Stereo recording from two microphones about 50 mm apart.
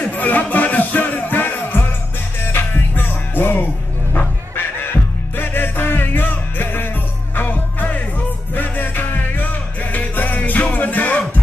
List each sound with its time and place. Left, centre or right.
0.1 s music: left